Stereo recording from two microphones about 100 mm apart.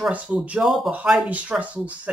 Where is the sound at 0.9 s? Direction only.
15° right (ahead or behind).